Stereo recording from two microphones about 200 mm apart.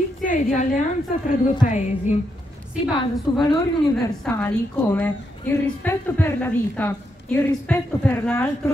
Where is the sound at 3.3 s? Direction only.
25° left (ahead or behind).